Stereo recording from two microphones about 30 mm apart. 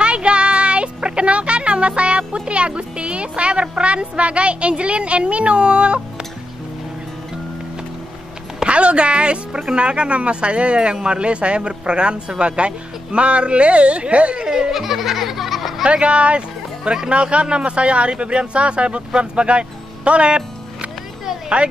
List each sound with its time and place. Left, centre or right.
0.0 s music: right
3.7 s speech: right
8.6 s a woman's voice: right
14.4 s baby laughter: right
14.7 s baby laughter: centre
15.9 s speech: right
17.1 s speech: right
20.1 s music: right